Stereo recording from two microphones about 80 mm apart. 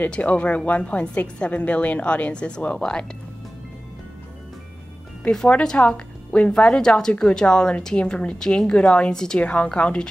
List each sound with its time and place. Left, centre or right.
0.0 s speech: centre
5.2 s speech: centre